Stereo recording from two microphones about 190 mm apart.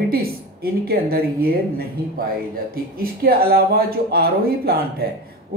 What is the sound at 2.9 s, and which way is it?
Speech, 50° right (ahead or behind).